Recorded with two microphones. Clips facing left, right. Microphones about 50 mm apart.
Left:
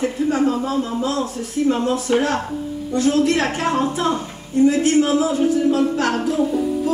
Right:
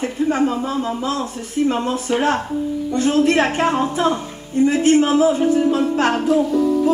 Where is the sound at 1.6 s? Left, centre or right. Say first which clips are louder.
Left 2 dB; right.